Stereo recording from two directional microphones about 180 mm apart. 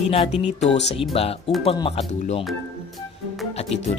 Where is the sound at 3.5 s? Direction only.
35° left (ahead or behind).